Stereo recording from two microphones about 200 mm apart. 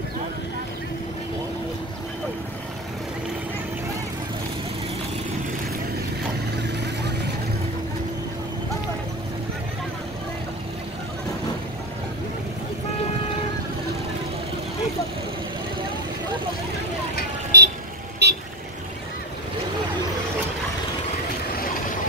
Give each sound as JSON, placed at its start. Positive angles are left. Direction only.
{"t": 17.5, "sound": "vehicle", "side_deg": -55}